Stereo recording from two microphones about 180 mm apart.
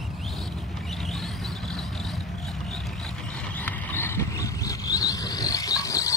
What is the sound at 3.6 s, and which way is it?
Vehicle, 10° left (ahead or behind).